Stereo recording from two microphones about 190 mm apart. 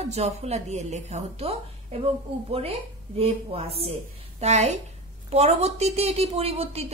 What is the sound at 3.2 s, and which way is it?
Speech, 30° right (ahead or behind).